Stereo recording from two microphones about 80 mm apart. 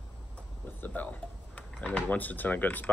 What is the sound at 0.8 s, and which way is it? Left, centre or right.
Speech, left.